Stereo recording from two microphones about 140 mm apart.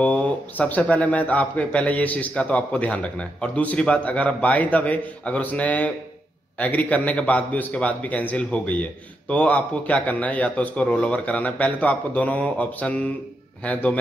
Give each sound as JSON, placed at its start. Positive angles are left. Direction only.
{"t": 0.0, "sound": "a man's voice", "side_deg": 10}